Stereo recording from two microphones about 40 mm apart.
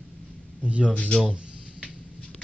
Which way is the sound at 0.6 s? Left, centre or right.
Right.